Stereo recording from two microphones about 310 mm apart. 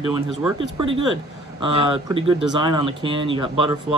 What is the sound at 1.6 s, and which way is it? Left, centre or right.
Speech, centre.